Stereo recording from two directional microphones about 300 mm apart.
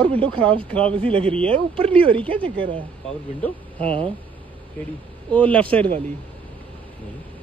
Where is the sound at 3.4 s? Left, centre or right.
Centre.